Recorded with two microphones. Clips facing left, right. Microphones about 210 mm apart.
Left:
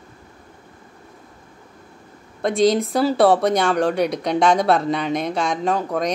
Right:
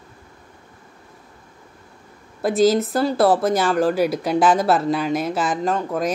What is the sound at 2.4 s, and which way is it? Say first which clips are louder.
Speech: right 1 dB; 5° right (ahead or behind).